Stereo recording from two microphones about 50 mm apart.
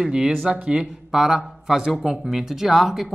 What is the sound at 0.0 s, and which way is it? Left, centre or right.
Speech, centre.